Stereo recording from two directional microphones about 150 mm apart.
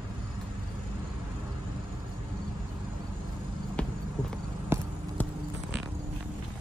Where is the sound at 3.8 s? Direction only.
10° left (ahead or behind).